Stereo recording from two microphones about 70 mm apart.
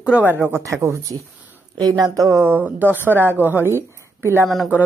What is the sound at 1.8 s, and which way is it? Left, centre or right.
Speech, right.